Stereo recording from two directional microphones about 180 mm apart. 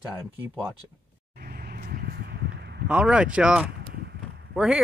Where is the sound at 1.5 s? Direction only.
60° right (ahead or behind).